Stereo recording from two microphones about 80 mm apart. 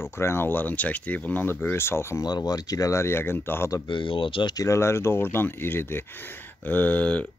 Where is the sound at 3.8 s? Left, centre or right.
Left.